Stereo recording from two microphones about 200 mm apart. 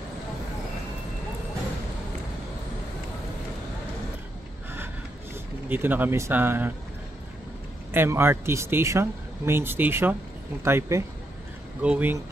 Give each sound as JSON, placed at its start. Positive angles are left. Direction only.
{"t": 5.7, "sound": "speech", "side_deg": -10}
{"t": 7.9, "sound": "speech", "side_deg": -10}